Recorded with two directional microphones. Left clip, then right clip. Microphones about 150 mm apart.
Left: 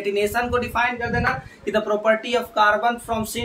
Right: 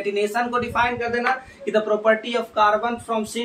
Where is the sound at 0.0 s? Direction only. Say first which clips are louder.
Even; 25° left (ahead or behind).